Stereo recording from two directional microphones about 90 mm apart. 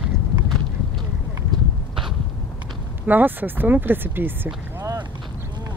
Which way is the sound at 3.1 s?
20° right (ahead or behind).